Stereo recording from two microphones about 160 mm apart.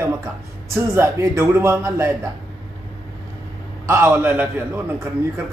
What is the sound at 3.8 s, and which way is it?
Speech, 15° right (ahead or behind).